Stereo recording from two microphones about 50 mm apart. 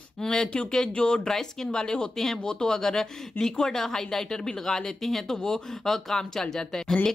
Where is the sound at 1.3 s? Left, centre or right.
Centre.